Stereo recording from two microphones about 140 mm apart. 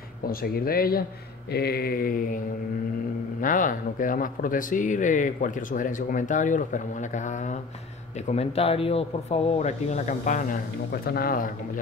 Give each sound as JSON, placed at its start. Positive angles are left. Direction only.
{"t": 0.3, "sound": "speech", "side_deg": 90}
{"t": 3.3, "sound": "speech", "side_deg": 70}
{"t": 8.3, "sound": "speech", "side_deg": 45}